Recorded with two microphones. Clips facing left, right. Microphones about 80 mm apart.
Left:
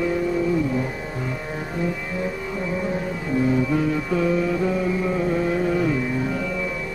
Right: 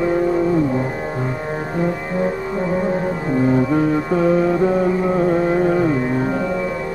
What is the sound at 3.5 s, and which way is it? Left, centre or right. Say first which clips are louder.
Music: right 5 dB; right.